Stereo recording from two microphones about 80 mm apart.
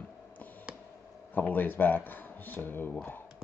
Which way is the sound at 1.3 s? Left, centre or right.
Left.